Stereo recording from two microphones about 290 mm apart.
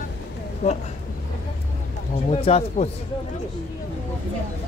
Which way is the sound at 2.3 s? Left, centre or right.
Left.